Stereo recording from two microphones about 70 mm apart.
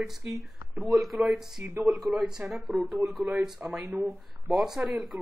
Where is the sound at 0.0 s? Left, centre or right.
Centre.